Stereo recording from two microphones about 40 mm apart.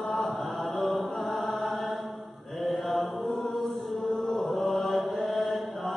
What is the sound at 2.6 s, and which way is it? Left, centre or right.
Mantra, centre.